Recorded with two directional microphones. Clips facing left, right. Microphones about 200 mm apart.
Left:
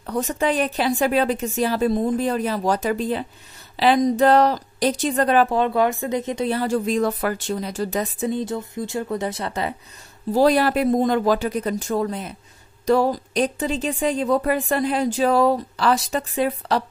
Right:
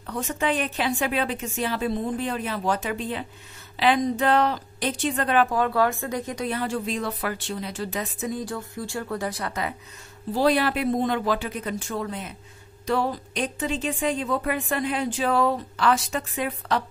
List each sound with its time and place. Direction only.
0.0 s a woman's voice: 40° left (ahead or behind)
5.6 s speech: 20° left (ahead or behind)
10.3 s a woman's voice: 40° left (ahead or behind)